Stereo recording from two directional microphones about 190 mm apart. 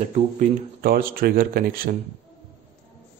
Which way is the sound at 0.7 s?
50° right (ahead or behind).